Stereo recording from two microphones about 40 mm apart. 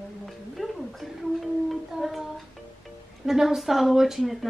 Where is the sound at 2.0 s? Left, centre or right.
Centre.